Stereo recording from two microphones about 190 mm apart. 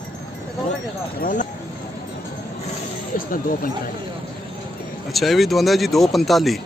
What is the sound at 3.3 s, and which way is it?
Speech, 45° left (ahead or behind).